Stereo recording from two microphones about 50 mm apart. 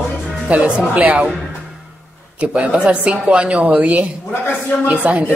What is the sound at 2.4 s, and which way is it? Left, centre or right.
A woman's voice, centre.